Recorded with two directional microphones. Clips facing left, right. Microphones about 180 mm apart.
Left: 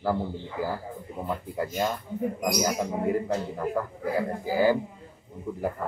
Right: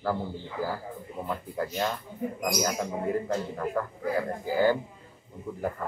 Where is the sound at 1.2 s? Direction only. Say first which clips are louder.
Left 1 dB; 10° left (ahead or behind).